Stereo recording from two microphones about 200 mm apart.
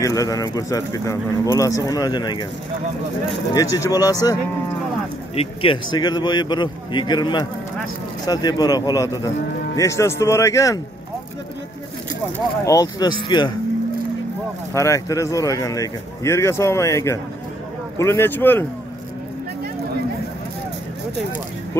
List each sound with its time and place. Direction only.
0.0 s speech: 15° left (ahead or behind)
3.5 s speech: 20° left (ahead or behind)
12.6 s speech: 20° left (ahead or behind)
14.7 s speech: 15° left (ahead or behind)